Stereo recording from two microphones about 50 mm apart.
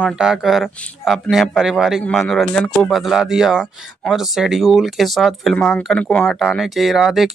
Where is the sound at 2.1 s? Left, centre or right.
Centre.